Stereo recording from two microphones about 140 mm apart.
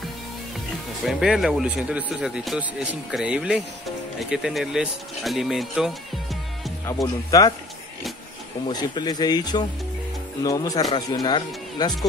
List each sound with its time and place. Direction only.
1.0 s speech: centre (ahead or behind)
7.2 s speech: 25° left (ahead or behind)
8.6 s speech: 30° left (ahead or behind)